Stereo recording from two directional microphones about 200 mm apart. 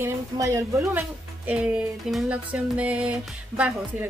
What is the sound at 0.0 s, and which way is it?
A woman's voice, 15° right (ahead or behind).